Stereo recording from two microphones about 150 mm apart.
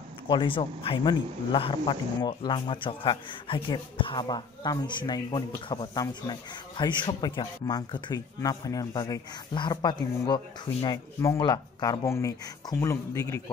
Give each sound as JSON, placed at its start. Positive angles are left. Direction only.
{"t": 0.3, "sound": "speech", "side_deg": 35}